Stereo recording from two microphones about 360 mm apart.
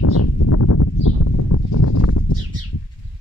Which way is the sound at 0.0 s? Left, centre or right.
Left.